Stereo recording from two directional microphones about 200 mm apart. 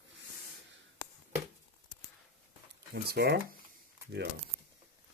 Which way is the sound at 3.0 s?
55° right (ahead or behind).